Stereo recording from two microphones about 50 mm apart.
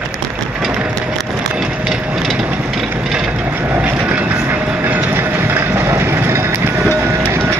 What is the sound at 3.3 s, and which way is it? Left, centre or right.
Wood, right.